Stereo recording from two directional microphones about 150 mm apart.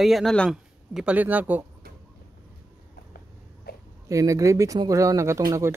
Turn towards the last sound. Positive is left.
turn(degrees=-20)  # may be behind; listen again after turning